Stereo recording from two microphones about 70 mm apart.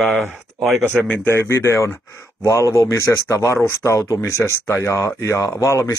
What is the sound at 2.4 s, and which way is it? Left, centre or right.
Speech, left.